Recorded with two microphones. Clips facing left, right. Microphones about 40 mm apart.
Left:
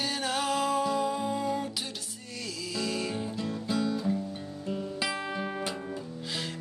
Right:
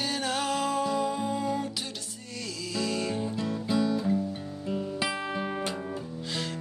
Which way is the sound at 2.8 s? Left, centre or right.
Centre.